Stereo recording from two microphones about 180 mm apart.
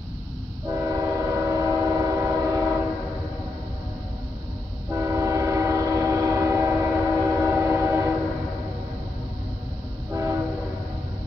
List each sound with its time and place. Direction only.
0.7 s train: 20° right (ahead or behind)
4.9 s train: 15° right (ahead or behind)
10.1 s train: 15° right (ahead or behind)